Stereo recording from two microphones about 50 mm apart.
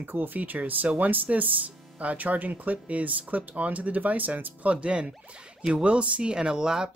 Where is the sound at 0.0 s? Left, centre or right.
Right.